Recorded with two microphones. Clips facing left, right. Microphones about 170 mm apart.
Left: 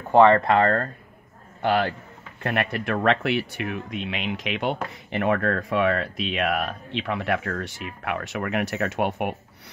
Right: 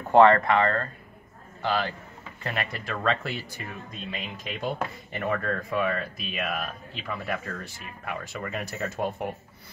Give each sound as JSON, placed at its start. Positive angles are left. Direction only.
{"t": 0.1, "sound": "speech", "side_deg": 15}
{"t": 0.5, "sound": "speech", "side_deg": 45}
{"t": 1.6, "sound": "a man's voice", "side_deg": 60}